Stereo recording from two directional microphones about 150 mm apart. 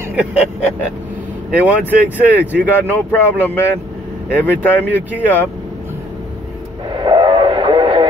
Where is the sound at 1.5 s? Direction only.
10° right (ahead or behind).